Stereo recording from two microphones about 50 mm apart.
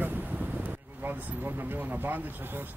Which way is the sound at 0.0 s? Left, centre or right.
Right.